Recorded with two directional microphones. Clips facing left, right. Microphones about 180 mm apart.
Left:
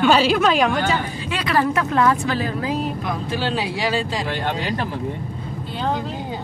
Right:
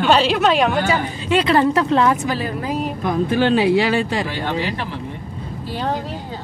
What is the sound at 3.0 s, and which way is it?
Speech, 50° right (ahead or behind).